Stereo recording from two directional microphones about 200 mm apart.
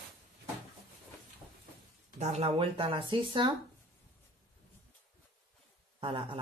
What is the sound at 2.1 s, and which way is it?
Speech, 35° right (ahead or behind).